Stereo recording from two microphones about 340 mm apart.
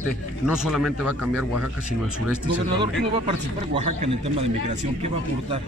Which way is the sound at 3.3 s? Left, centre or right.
Centre.